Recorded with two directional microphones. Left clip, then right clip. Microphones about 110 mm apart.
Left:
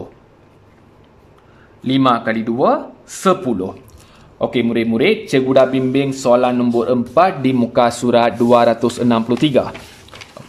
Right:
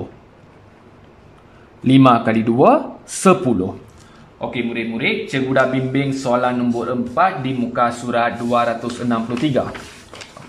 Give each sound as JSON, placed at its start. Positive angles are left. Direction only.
{"t": 1.9, "sound": "speech", "side_deg": -10}
{"t": 4.4, "sound": "speech", "side_deg": 60}
{"t": 5.6, "sound": "speech", "side_deg": 30}
{"t": 6.7, "sound": "speech", "side_deg": 40}
{"t": 9.1, "sound": "speech", "side_deg": 25}